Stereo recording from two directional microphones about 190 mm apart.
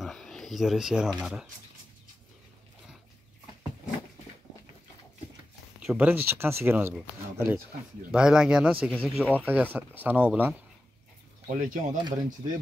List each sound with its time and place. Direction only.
0.0 s speech: centre (ahead or behind)
5.8 s speech: 5° right (ahead or behind)
11.4 s speech: 40° right (ahead or behind)